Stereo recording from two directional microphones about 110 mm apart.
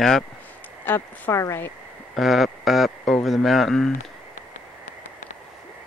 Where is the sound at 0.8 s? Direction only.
25° left (ahead or behind).